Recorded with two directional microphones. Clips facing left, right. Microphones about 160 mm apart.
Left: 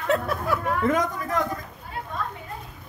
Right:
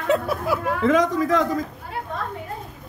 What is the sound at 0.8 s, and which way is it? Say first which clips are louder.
Speech: right 5 dB; 90° right.